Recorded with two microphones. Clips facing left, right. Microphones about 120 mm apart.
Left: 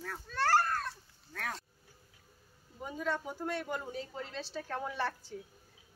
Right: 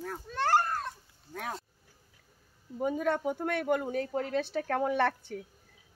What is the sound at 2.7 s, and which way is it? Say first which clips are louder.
Speech: right 7 dB; 55° right (ahead or behind).